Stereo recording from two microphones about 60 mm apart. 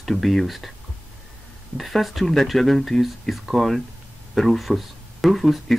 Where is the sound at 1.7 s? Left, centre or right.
Centre.